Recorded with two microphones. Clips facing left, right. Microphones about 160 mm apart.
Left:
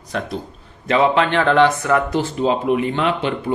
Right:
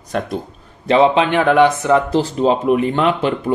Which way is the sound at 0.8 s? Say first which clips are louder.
Right 3 dB; 30° right (ahead or behind).